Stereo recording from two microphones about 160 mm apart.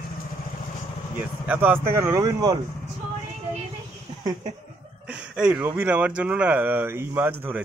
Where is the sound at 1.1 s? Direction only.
10° right (ahead or behind).